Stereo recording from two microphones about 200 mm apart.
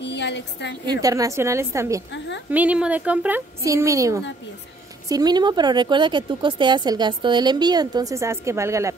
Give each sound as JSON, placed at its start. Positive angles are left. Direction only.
{"t": 0.0, "sound": "a woman's voice", "side_deg": 60}
{"t": 1.0, "sound": "a woman's voice", "side_deg": -15}
{"t": 2.1, "sound": "a sound", "side_deg": 65}
{"t": 2.5, "sound": "a woman's voice", "side_deg": -5}